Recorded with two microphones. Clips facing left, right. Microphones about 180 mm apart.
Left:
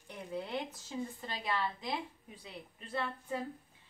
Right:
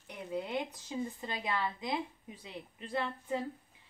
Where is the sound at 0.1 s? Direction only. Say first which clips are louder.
Right 2 dB; 15° right (ahead or behind).